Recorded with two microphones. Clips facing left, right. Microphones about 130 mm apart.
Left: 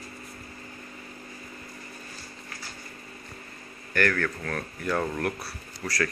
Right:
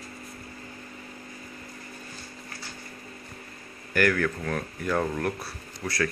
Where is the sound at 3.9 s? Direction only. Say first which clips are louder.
Right 2 dB; 5° right (ahead or behind).